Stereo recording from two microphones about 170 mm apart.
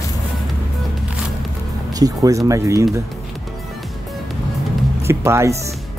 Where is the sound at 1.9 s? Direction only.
20° right (ahead or behind).